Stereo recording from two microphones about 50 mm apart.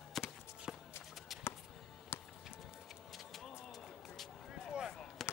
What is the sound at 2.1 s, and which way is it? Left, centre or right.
Music, left.